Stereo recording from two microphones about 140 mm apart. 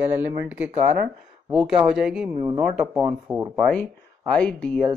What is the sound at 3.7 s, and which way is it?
Speech, 10° left (ahead or behind).